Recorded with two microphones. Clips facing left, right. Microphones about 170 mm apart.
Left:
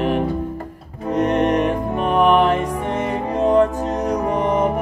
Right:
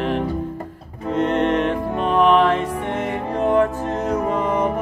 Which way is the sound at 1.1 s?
15° left (ahead or behind).